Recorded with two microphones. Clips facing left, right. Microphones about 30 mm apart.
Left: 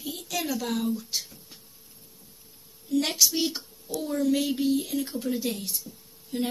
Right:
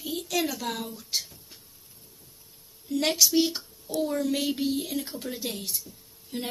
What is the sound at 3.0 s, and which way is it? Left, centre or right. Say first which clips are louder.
Speech: right 2 dB; centre.